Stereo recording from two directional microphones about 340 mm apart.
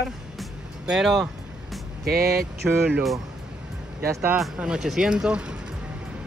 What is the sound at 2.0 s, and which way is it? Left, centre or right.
Speech, right.